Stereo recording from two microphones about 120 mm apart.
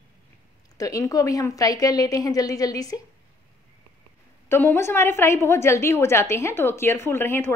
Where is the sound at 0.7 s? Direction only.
30° left (ahead or behind).